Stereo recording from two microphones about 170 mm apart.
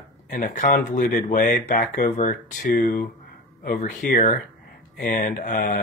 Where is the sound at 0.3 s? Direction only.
50° left (ahead or behind).